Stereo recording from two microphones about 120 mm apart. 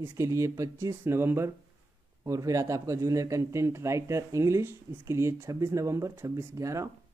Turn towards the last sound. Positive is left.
turn(degrees=-25)  # may be behind; listen again after turning